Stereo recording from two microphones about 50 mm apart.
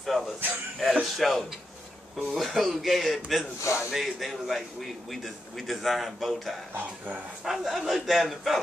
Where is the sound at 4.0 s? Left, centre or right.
Centre.